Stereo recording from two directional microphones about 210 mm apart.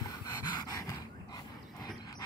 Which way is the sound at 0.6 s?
15° left (ahead or behind).